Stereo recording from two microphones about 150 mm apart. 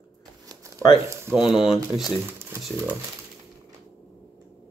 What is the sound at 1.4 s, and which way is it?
Speech, 5° right (ahead or behind).